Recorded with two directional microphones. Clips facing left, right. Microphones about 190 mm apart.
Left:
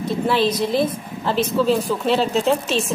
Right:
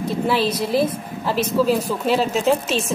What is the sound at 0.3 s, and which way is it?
A woman's voice, 5° right (ahead or behind).